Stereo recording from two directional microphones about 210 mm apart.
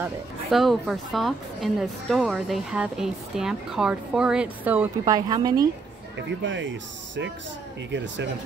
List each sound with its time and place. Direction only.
0.0 s speech: centre (ahead or behind); by 5.7 s 20° right (ahead or behind)
6.1 s speech: 60° right (ahead or behind)